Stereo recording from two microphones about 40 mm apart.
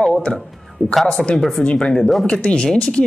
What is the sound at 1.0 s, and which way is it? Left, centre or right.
Speech, left.